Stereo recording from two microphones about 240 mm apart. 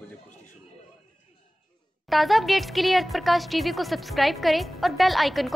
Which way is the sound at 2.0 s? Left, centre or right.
Centre.